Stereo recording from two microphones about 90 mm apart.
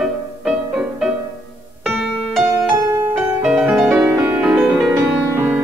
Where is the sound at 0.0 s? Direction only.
5° right (ahead or behind).